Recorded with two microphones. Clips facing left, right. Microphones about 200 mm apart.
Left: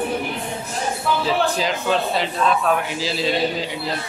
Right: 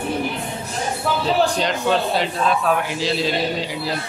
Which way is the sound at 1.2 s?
5° left (ahead or behind).